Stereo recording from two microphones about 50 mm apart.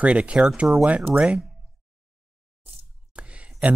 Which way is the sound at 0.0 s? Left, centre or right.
Right.